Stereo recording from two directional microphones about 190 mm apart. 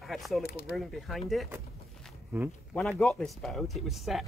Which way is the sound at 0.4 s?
60° left (ahead or behind).